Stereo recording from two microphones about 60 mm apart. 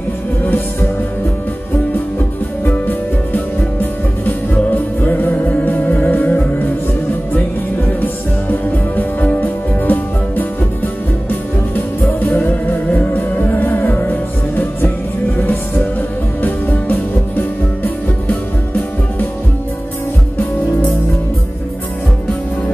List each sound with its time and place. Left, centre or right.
2.1 s music: left
8.0 s music: left
16.4 s music: left
18.3 s music: left